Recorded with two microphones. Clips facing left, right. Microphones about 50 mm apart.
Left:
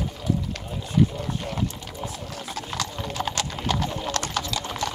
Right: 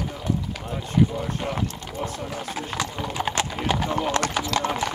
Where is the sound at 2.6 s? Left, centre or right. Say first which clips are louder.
Right 1 dB; centre.